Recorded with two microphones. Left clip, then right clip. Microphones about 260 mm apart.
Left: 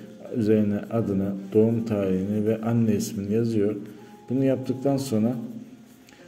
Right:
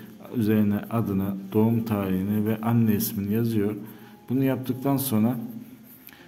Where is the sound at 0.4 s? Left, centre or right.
Centre.